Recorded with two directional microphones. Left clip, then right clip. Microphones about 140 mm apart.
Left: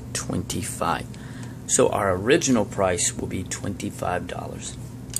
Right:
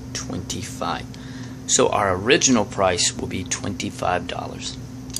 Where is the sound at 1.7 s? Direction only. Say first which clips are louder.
Right 2 dB; 15° left (ahead or behind).